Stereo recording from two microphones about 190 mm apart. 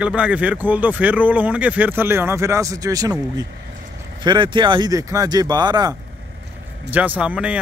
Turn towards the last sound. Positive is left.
turn(degrees=-5)  # may be behind; listen again after turning